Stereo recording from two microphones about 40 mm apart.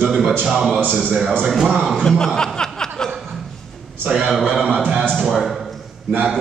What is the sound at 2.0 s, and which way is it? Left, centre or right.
Chuckle, centre.